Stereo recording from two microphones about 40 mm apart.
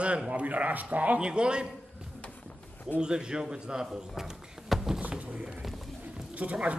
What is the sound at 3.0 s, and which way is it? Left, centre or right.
A man's voice, right.